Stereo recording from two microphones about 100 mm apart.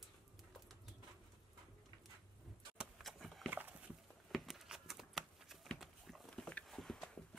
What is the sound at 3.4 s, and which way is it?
Dog, 15° right (ahead or behind).